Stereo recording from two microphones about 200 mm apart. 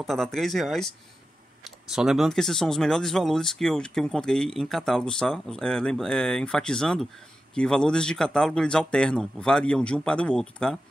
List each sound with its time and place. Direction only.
0.0 s speech: centre (ahead or behind)